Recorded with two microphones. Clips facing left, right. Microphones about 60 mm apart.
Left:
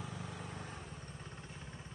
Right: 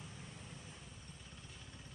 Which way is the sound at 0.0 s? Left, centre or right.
Left.